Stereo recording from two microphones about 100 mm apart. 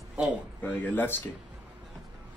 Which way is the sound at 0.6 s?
15° left (ahead or behind).